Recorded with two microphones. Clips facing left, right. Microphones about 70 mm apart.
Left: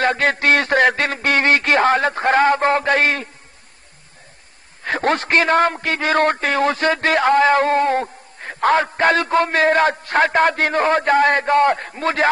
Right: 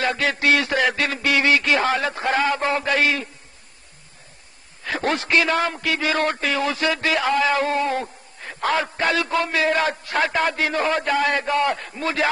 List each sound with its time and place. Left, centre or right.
0.0 s a man's voice: left
4.8 s a man's voice: left